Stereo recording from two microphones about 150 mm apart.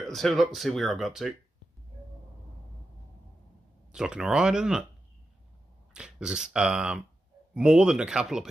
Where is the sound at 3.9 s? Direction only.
5° right (ahead or behind).